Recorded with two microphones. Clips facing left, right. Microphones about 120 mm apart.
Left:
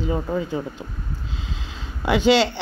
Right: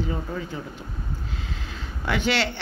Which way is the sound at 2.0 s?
15° left (ahead or behind).